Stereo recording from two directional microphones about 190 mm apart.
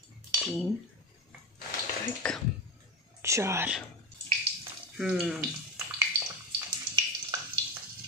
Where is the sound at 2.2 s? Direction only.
5° left (ahead or behind).